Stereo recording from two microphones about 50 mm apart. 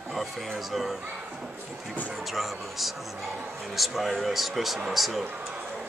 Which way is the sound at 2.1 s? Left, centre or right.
Centre.